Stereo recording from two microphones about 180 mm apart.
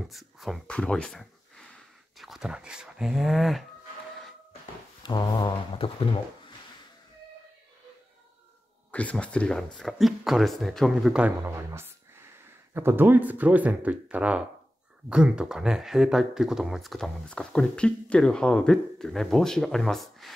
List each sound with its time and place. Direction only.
0.1 s speech: centre (ahead or behind)
5.0 s a sound: 25° left (ahead or behind)
8.9 s speech: 5° left (ahead or behind)